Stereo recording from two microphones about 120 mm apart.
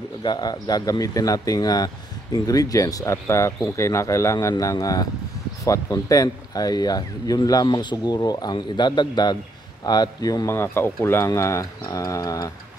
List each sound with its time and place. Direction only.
0.2 s speech: 35° left (ahead or behind)